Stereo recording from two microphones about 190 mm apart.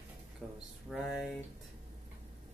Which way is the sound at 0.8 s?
5° right (ahead or behind).